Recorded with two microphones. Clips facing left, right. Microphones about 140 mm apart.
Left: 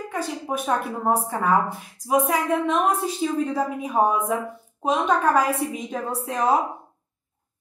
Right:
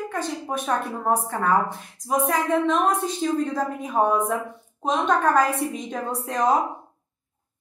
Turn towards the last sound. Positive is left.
turn(degrees=5)  # may be behind; listen again after turning